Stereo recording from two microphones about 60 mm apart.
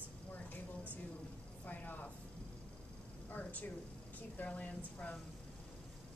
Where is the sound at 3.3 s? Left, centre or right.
Left.